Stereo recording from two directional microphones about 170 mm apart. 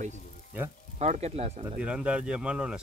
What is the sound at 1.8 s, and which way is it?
Speech, 5° right (ahead or behind).